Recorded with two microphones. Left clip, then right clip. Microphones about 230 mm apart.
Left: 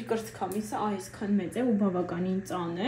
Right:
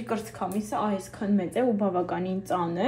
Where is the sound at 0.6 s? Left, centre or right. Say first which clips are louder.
Right 5 dB; right.